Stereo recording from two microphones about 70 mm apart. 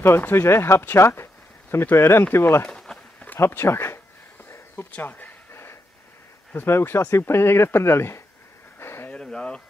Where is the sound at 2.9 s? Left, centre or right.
Centre.